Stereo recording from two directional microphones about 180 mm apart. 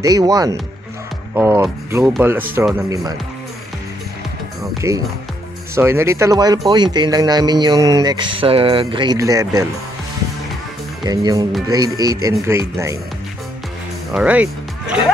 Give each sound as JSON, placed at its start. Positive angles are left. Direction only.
{"t": 0.0, "sound": "speech", "side_deg": -20}
{"t": 4.9, "sound": "speech", "side_deg": -15}
{"t": 11.1, "sound": "speech", "side_deg": -20}
{"t": 14.1, "sound": "speech", "side_deg": -10}